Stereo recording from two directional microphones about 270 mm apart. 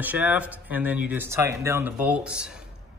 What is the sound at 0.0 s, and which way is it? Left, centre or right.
Speech, centre.